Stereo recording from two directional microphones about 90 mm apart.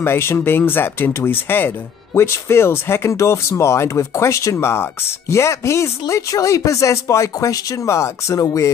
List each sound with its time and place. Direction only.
0.0 s speech: 25° left (ahead or behind)